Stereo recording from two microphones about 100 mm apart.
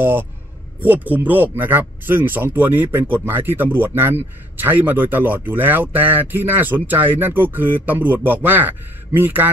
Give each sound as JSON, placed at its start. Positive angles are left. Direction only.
{"t": 0.8, "sound": "speech", "side_deg": -15}